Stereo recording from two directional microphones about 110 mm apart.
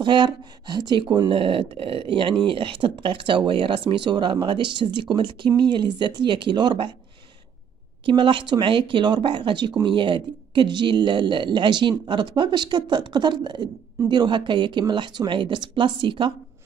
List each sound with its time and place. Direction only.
0.0 s speech: 45° right (ahead or behind)
1.3 s speech: 55° right (ahead or behind)
8.0 s speech: 50° right (ahead or behind)